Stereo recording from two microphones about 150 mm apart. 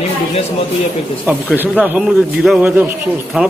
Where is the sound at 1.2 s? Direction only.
10° right (ahead or behind).